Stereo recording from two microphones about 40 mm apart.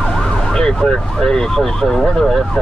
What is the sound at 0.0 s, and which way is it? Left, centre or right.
Emergency vehicle, centre.